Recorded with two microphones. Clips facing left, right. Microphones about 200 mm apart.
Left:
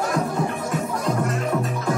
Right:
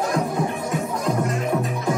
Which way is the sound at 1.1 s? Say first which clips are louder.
Right 1 dB; 15° right (ahead or behind).